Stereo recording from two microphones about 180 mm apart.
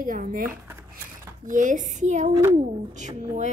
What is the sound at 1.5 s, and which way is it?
A woman's voice, 45° right (ahead or behind).